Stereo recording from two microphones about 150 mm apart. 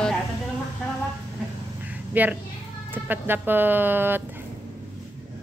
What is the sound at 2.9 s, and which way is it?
Speech, 15° right (ahead or behind).